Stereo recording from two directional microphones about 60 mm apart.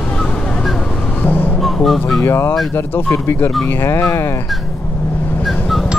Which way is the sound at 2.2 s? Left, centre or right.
Left.